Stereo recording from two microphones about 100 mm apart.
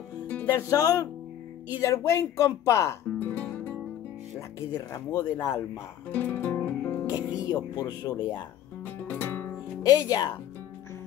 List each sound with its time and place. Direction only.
0.5 s speech: 35° left (ahead or behind); by 3.7 s 20° left (ahead or behind)
4.6 s speech: 35° left (ahead or behind)
6.1 s music: 20° left (ahead or behind)
7.1 s speech: 40° left (ahead or behind)
8.8 s music: 20° left (ahead or behind)
9.8 s speech: 40° left (ahead or behind)